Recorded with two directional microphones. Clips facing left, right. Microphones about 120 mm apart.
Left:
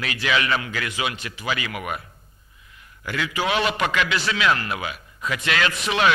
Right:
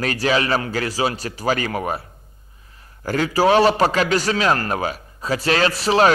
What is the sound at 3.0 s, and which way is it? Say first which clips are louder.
A man's voice: right 8 dB; 40° right (ahead or behind).